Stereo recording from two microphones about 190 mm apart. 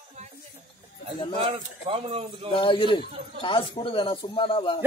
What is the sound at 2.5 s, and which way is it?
A man's voice, 25° left (ahead or behind).